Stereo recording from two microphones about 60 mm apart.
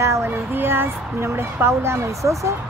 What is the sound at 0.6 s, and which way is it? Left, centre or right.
Speech, right.